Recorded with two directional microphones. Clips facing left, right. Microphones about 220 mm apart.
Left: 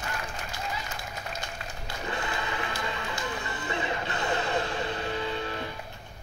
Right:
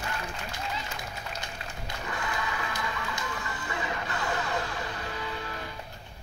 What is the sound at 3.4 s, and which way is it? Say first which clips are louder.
Music: left 3 dB; 25° left (ahead or behind).